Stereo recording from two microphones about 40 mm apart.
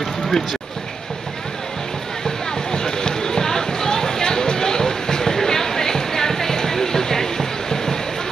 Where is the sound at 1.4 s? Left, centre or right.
Centre.